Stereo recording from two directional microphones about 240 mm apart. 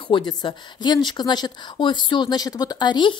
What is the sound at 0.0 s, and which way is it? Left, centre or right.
Speech, centre.